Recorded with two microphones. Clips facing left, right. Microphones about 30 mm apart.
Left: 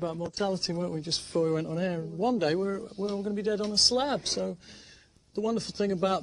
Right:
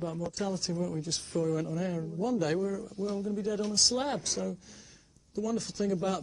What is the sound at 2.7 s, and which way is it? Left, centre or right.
Speech, left.